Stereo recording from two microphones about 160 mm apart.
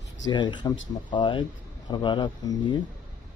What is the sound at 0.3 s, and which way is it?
Speech, 30° left (ahead or behind).